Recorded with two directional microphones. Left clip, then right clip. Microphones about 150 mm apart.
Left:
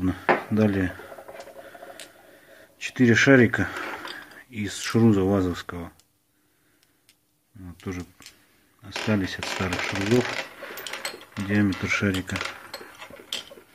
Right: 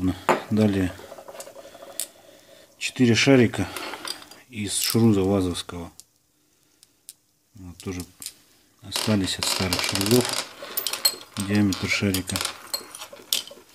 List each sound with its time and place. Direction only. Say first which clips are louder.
0.0 s dishes: even; 25° right (ahead or behind)
1.6 s rodents: right 2 dB; 20° right (ahead or behind)
2.5 s speech: right 3 dB; 10° right (ahead or behind)
7.7 s speech: right 1 dB; 25° right (ahead or behind)
8.8 s shuffling cards: right 2 dB; 30° right (ahead or behind)